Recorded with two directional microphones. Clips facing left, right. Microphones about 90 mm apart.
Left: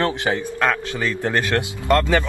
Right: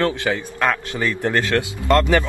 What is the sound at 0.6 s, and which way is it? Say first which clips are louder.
Speech: right 1 dB; 20° right (ahead or behind).